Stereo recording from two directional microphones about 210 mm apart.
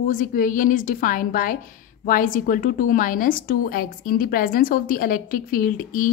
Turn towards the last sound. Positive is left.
turn(degrees=40)  # may be behind; listen again after turning